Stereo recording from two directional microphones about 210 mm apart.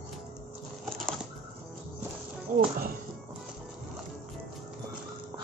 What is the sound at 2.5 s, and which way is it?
Speech, 40° right (ahead or behind).